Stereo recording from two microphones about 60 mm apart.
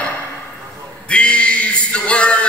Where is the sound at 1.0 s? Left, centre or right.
Centre.